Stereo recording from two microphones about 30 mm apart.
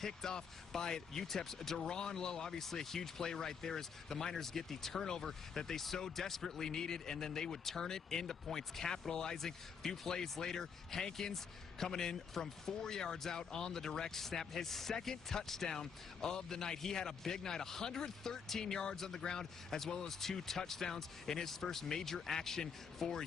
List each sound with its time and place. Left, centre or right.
0.0 s a man's voice: centre
1.2 s speech: centre
1.8 s a man's voice: left